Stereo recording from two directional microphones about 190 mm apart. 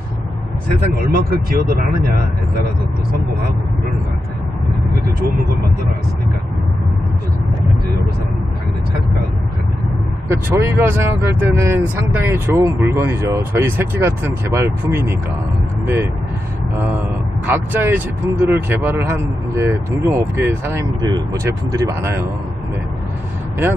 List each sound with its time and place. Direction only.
1.1 s speech: 55° right (ahead or behind)
10.2 s speech: 15° right (ahead or behind)
16.7 s speech: 10° right (ahead or behind)